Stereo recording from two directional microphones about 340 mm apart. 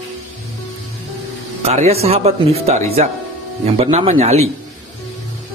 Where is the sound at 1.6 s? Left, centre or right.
Centre.